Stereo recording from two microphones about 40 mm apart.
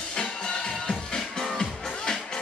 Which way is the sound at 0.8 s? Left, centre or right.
Centre.